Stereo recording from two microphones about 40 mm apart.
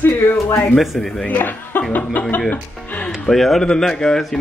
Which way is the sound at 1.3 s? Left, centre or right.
Left.